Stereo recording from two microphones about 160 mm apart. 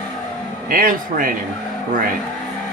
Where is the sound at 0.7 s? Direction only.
60° right (ahead or behind).